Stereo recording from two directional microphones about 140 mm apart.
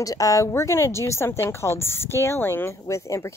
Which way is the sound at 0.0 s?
25° left (ahead or behind).